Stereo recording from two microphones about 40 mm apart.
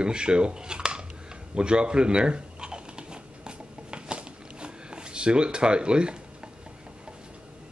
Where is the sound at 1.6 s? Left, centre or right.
Right.